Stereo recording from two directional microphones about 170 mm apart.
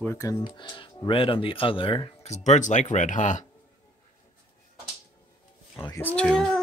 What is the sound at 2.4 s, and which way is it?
Speech, 45° left (ahead or behind).